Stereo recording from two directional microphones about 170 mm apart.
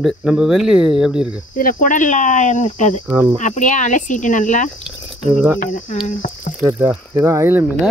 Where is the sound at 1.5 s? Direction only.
55° left (ahead or behind).